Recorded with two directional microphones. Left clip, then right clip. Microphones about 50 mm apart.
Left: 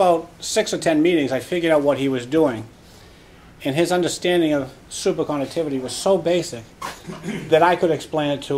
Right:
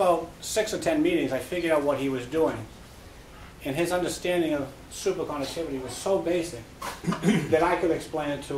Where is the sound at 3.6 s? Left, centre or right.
Left.